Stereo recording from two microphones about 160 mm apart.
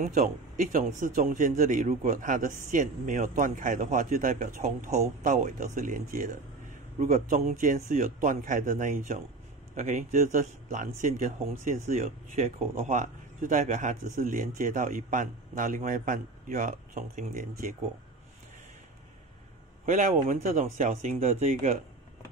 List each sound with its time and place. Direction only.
0.1 s speech: 50° right (ahead or behind)
7.0 s speech: 45° right (ahead or behind)
19.9 s speech: 50° right (ahead or behind)